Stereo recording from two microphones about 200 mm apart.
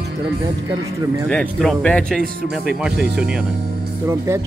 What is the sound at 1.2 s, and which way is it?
Speech, 5° left (ahead or behind).